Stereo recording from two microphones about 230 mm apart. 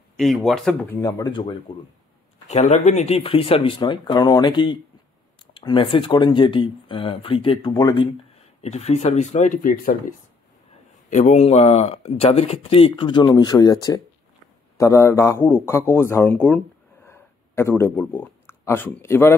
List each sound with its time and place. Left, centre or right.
0.2 s a man's voice: centre